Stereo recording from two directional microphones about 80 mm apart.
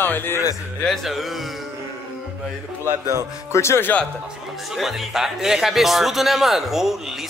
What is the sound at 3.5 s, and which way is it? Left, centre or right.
Speech, left.